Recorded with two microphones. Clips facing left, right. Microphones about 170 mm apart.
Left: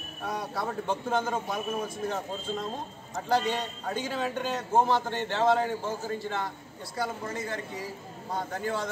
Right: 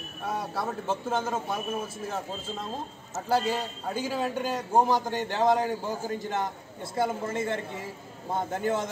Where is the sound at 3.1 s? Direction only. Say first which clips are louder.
Right 1 dB; 5° right (ahead or behind).